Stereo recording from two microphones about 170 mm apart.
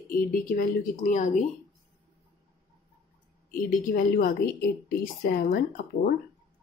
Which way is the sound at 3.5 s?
55° left (ahead or behind).